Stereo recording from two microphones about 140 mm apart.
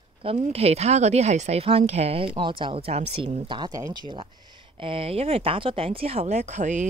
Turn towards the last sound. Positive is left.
turn(degrees=-60)  # may be behind; listen again after turning